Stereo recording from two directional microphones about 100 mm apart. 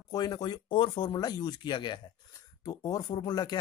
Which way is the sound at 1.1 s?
45° left (ahead or behind).